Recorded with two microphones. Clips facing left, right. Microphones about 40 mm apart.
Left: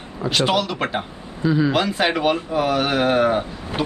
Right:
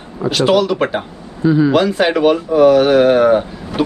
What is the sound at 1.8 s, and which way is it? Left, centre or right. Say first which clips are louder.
A man's voice: right 6 dB; centre.